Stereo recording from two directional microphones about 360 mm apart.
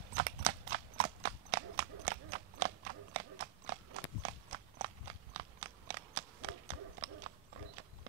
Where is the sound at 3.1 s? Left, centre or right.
Centre.